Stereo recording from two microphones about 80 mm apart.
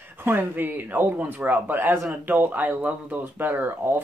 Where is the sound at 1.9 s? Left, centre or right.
Centre.